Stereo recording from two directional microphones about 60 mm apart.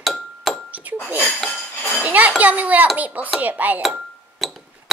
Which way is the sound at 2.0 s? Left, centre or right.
Right.